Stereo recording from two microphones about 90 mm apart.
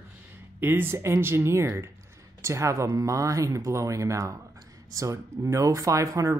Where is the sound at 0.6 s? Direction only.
25° right (ahead or behind).